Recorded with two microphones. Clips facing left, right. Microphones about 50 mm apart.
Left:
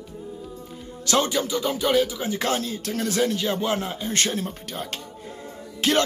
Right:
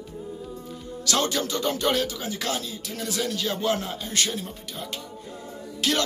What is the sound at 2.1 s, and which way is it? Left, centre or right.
A man's voice, left.